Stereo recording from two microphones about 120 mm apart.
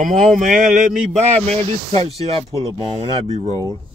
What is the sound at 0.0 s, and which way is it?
Speech, 90° right.